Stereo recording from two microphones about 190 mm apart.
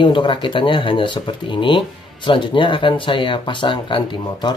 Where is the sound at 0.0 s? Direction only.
25° left (ahead or behind).